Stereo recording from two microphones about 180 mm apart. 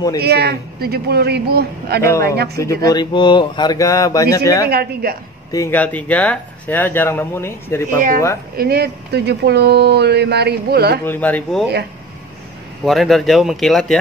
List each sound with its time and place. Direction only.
0.2 s speech: 65° right (ahead or behind)
2.6 s speech: 15° left (ahead or behind)
4.6 s speech: 60° right (ahead or behind)
5.5 s speech: 15° left (ahead or behind)
8.5 s speech: 60° right (ahead or behind)
11.1 s speech: 10° left (ahead or behind)
12.8 s speech: centre (ahead or behind)